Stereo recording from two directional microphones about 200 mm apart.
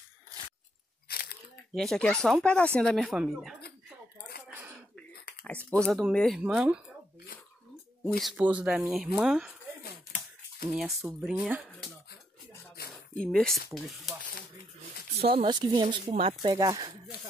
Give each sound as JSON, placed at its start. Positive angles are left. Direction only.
{"t": 1.0, "sound": "a sound", "side_deg": 50}
{"t": 1.7, "sound": "speech", "side_deg": 0}
{"t": 5.4, "sound": "speech", "side_deg": 5}
{"t": 8.2, "sound": "speech", "side_deg": -5}
{"t": 10.7, "sound": "speech", "side_deg": 0}
{"t": 13.2, "sound": "speech", "side_deg": 5}
{"t": 15.1, "sound": "speech", "side_deg": -30}